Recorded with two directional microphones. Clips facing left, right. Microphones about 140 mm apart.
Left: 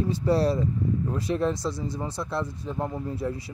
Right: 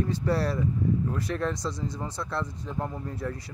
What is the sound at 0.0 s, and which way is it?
Speech, 15° left (ahead or behind).